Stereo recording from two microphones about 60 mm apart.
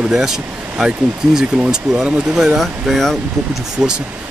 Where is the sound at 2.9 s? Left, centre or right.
Centre.